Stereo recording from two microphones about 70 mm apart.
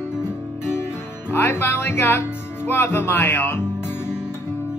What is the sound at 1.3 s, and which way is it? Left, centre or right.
Music, left.